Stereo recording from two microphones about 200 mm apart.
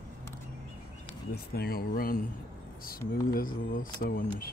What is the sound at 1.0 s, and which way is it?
Speech, 50° left (ahead or behind).